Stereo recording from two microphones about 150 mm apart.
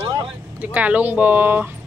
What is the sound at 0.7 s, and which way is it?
Speech, 10° right (ahead or behind).